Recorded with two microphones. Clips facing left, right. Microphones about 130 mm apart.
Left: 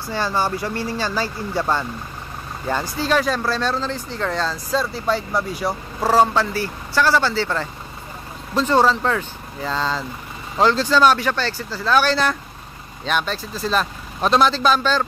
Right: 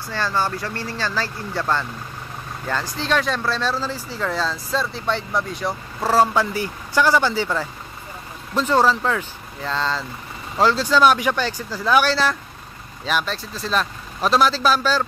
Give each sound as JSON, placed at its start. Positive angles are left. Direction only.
{"t": 0.1, "sound": "speech", "side_deg": 15}
{"t": 6.3, "sound": "speech", "side_deg": -15}
{"t": 8.5, "sound": "speech", "side_deg": 0}
{"t": 10.6, "sound": "speech", "side_deg": -5}